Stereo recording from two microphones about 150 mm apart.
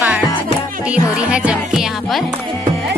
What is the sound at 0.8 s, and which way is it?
Music, 5° right (ahead or behind).